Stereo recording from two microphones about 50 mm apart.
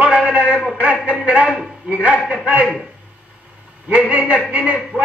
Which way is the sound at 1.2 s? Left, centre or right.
Right.